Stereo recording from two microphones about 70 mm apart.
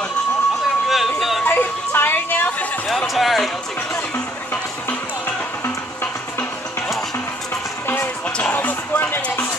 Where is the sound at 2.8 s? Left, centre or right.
Centre.